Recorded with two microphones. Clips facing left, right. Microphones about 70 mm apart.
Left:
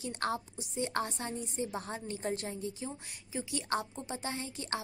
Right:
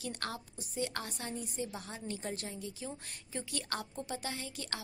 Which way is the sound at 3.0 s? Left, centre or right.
Centre.